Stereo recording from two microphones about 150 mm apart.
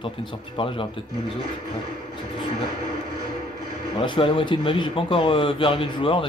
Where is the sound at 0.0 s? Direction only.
35° left (ahead or behind).